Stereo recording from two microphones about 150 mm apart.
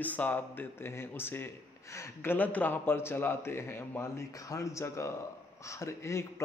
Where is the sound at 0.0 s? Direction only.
10° left (ahead or behind).